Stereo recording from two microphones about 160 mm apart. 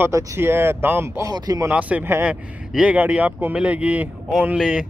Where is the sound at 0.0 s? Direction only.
15° right (ahead or behind).